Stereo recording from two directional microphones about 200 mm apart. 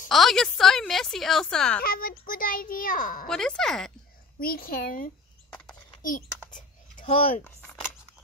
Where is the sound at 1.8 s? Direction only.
45° left (ahead or behind).